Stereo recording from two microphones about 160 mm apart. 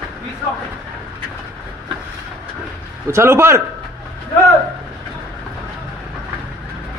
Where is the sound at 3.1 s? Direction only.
15° right (ahead or behind).